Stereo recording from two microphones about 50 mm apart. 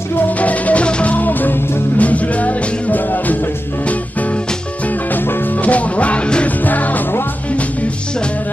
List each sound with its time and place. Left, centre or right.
0.4 s music: left
5.1 s music: left
5.6 s music: left
6.6 s music: left